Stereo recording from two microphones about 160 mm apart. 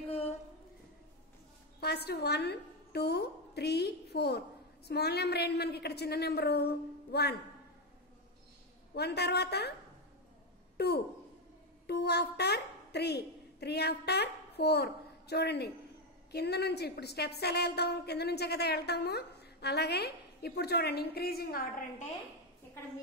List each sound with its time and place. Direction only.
1.8 s a woman's voice: 90° left
8.9 s a woman's voice: 90° left
10.8 s a woman's voice: 90° left; by 21.8 s 65° left (ahead or behind)